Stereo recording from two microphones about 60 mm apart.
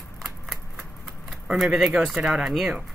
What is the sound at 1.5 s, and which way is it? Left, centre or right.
Speech, centre.